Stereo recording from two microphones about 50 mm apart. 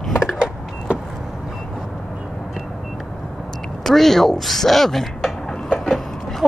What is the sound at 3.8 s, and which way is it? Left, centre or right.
Speech, centre.